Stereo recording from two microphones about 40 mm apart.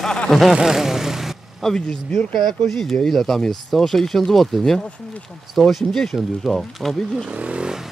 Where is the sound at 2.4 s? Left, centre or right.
Centre.